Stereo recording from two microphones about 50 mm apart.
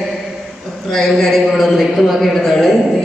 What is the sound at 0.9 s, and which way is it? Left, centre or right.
A man's voice, centre.